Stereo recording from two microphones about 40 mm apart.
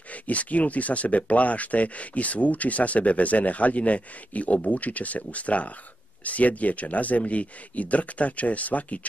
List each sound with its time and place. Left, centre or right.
0.1 s speech: left